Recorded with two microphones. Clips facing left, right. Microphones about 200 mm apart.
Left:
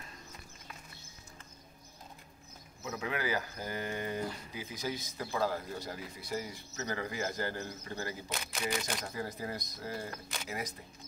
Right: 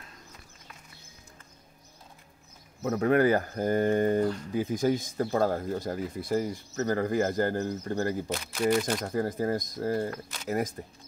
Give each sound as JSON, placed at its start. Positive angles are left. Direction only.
{"t": 2.8, "sound": "speech", "side_deg": -55}